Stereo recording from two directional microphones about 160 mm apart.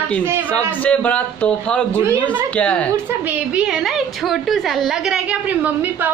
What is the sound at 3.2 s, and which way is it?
A woman's voice, 10° right (ahead or behind).